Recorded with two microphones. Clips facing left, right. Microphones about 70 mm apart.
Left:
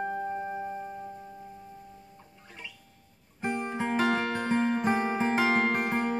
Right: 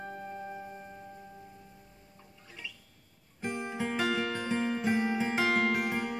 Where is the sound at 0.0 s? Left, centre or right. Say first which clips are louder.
Left 9 dB; left.